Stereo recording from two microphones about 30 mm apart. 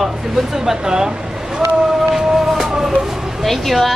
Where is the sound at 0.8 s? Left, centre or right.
Right.